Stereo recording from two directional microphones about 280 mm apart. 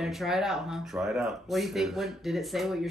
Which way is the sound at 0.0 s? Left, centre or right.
Centre.